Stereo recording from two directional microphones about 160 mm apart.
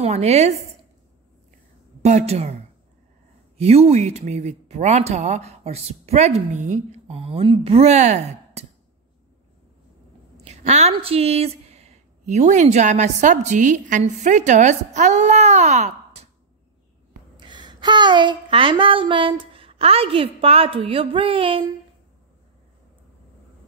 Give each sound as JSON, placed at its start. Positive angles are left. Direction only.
{"t": 0.0, "sound": "a sound", "side_deg": -40}
{"t": 2.0, "sound": "speech", "side_deg": -40}
{"t": 3.5, "sound": "speech", "side_deg": -40}
{"t": 10.3, "sound": "speech", "side_deg": -40}
{"t": 17.4, "sound": "speech", "side_deg": -30}